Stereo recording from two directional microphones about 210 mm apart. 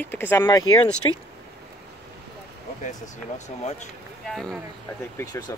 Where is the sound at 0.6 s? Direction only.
90° left.